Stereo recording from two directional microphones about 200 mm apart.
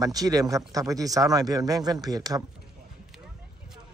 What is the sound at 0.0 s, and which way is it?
Speech, 20° right (ahead or behind).